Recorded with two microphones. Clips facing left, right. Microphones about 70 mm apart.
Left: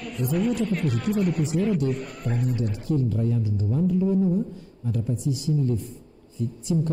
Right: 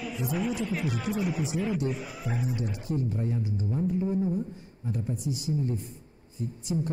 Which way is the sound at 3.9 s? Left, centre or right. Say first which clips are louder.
Left 6 dB; right.